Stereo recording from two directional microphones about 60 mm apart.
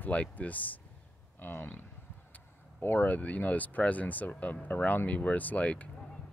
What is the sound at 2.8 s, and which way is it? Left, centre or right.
Speech, left.